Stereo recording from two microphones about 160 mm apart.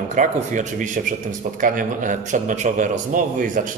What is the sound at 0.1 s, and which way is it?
A man's voice, 50° right (ahead or behind).